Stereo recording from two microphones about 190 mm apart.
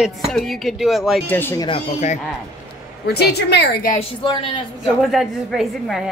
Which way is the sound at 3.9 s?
25° left (ahead or behind).